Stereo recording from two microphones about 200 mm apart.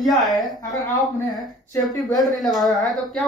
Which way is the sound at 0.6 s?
20° left (ahead or behind).